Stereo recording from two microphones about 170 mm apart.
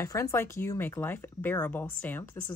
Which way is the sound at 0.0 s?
15° left (ahead or behind).